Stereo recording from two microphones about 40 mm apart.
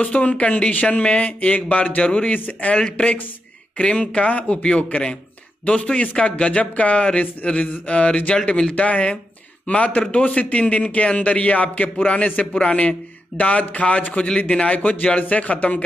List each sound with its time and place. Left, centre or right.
0.0 s a man's voice: left
2.3 s speech: left
2.7 s speech: left
5.9 s a man's voice: left
8.5 s speech: left
8.7 s a man's voice: left